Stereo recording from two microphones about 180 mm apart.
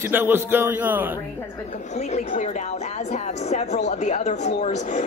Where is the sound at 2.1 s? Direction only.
45° left (ahead or behind).